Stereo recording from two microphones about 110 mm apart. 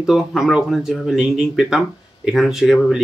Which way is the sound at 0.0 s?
5° right (ahead or behind).